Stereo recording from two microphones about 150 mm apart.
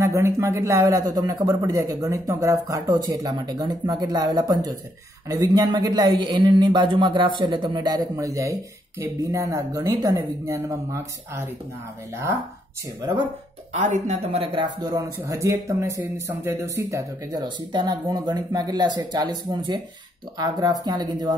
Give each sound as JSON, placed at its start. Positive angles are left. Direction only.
{"t": 0.0, "sound": "speech", "side_deg": -20}
{"t": 13.7, "sound": "speech", "side_deg": -55}